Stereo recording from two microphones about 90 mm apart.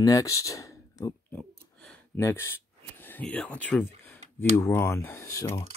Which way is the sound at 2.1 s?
30° left (ahead or behind).